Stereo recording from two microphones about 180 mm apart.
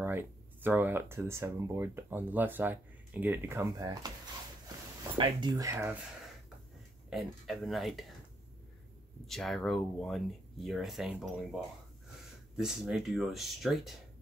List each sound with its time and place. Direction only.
0.0 s speech: 10° right (ahead or behind)
3.7 s speech: 20° right (ahead or behind)
5.1 s speech: 25° right (ahead or behind)
7.1 s speech: centre (ahead or behind)
9.3 s speech: centre (ahead or behind)